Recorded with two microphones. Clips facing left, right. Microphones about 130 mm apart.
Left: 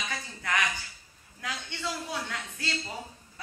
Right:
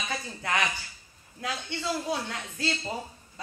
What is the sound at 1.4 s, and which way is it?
A woman's voice, 25° right (ahead or behind).